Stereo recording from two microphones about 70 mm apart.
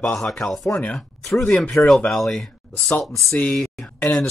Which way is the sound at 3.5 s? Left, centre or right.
Centre.